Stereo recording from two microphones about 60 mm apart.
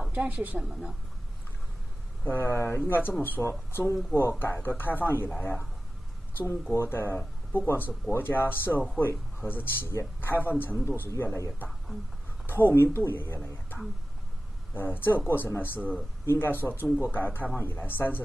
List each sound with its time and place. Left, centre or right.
0.1 s a woman's voice: right
0.6 s a woman's voice: centre
2.2 s speech: left
2.8 s speech: left